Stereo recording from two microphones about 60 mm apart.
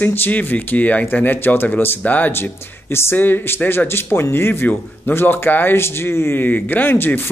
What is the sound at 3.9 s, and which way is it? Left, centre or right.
Speech, left.